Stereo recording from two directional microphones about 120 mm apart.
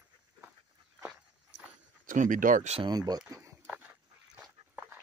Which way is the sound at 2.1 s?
90° right.